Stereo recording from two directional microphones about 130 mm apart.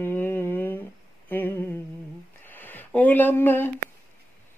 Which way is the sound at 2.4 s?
15° left (ahead or behind).